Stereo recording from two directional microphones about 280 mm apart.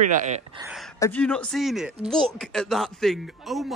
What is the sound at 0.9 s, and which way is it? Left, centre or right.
Speech, centre.